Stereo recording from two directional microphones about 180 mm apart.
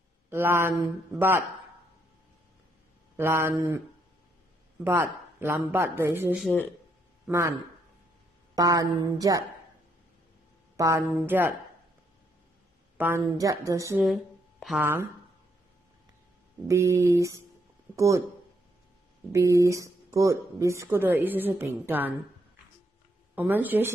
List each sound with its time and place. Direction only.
0.3 s speech: 10° right (ahead or behind)
3.2 s speech: 15° right (ahead or behind)
4.8 s speech: 10° right (ahead or behind)
8.5 s a woman's voice: 20° right (ahead or behind)
10.8 s speech: 15° right (ahead or behind)
12.9 s a sound: 10° right (ahead or behind)
13.2 s speech: 20° right (ahead or behind)
14.0 s a sound: centre (ahead or behind)
14.8 s speech: 15° right (ahead or behind)
16.6 s speech: 15° right (ahead or behind)
19.3 s speech: 15° right (ahead or behind)
23.3 s speech: 10° right (ahead or behind)